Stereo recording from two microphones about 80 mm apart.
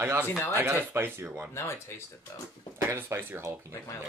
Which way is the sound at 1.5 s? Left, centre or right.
Left.